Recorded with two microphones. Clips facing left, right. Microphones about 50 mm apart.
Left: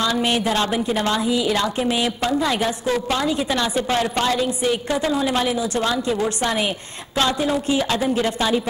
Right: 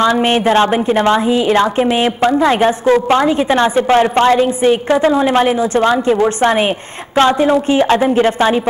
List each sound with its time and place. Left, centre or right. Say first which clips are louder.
0.0 s a woman's voice: right 8 dB; right